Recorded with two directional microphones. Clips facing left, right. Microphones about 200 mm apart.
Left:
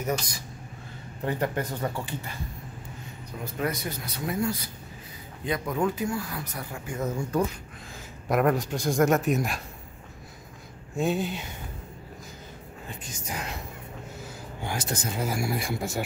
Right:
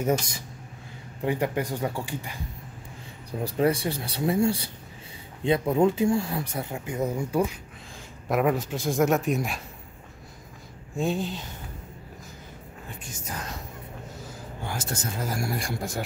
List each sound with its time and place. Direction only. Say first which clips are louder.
1.2 s speech: right 2 dB; 10° right (ahead or behind)
3.3 s speech: right 7 dB; 30° right (ahead or behind); by 9.6 s centre (ahead or behind)
11.0 s speech: left 1 dB; 5° left (ahead or behind)
13.3 s speech: left 1 dB; 10° left (ahead or behind)
14.7 s speech: left 2 dB; 15° left (ahead or behind)